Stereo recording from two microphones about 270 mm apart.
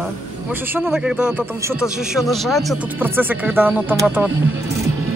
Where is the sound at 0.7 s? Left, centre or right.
Centre.